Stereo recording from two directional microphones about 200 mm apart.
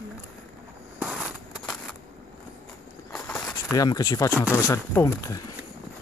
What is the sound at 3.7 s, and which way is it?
Speech, 15° left (ahead or behind).